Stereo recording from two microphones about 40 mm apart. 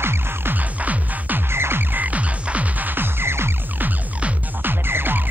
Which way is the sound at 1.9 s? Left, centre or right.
Right.